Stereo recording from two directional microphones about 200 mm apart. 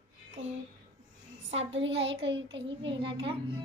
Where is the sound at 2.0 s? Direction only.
60° right (ahead or behind).